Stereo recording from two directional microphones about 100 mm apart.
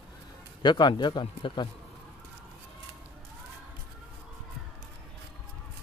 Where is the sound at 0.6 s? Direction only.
50° left (ahead or behind).